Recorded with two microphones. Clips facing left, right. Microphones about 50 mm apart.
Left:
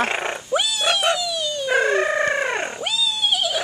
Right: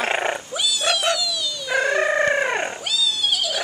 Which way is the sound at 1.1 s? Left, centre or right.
Left.